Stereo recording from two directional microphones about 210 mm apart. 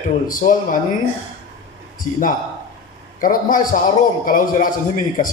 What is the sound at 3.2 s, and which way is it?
A man's voice, 40° left (ahead or behind).